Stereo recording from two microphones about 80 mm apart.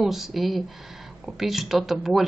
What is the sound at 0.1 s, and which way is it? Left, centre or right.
A woman's voice, centre.